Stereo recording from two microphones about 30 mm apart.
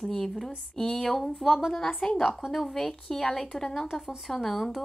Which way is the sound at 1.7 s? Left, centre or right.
Left.